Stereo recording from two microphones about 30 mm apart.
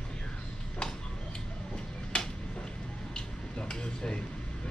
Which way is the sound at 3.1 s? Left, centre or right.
Left.